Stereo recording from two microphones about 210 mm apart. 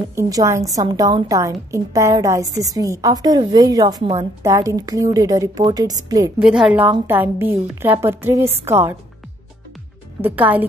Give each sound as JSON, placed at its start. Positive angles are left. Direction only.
{"t": 0.1, "sound": "a woman's voice", "side_deg": -15}
{"t": 6.4, "sound": "a woman's voice", "side_deg": 0}
{"t": 10.2, "sound": "a woman's voice", "side_deg": -10}